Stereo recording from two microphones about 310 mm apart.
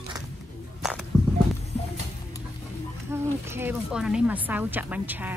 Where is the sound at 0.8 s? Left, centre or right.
Centre.